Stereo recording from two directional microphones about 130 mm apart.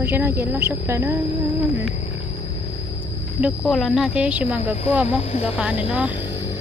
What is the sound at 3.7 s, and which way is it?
Speech, centre (ahead or behind).